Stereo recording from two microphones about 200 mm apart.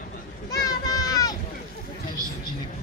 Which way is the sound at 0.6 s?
20° left (ahead or behind).